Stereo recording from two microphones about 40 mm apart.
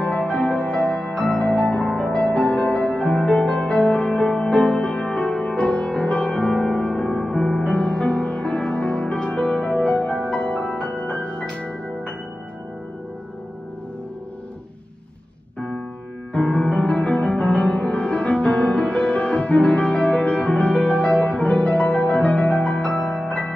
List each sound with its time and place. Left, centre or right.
0.0 s music: left
7.2 s music: centre
16.3 s music: left